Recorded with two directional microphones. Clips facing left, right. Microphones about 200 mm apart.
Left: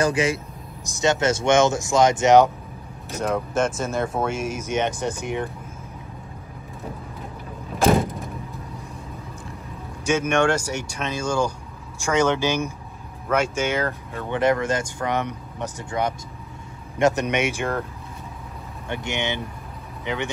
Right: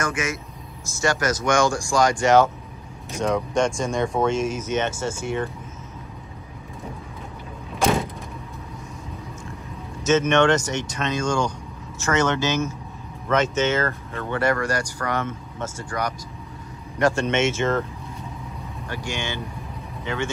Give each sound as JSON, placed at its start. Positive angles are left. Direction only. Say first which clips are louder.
{"t": 0.0, "sound": "speech", "louder": "left 6 dB", "side_deg": 30}
{"t": 0.8, "sound": "speech", "louder": "left 2 dB", "side_deg": 20}
{"t": 3.1, "sound": "speech", "louder": "right 1 dB", "side_deg": 5}
{"t": 8.0, "sound": "vehicle", "louder": "left 4 dB", "side_deg": 0}
{"t": 10.0, "sound": "speech", "louder": "right 2 dB", "side_deg": 10}
{"t": 18.9, "sound": "speech", "louder": "left 3 dB", "side_deg": 20}